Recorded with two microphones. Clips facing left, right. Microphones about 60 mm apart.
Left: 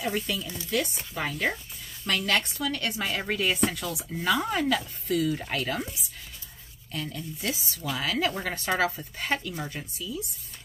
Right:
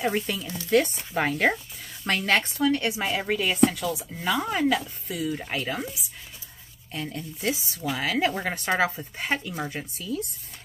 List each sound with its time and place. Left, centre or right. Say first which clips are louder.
0.0 s speech: right 3 dB; right
0.7 s speech: right 8 dB; right
2.0 s speech: right 3 dB; right
2.9 s speech: right 3 dB; centre
6.9 s speech: right 1 dB; right